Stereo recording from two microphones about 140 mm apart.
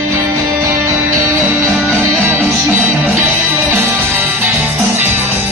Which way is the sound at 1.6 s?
15° right (ahead or behind).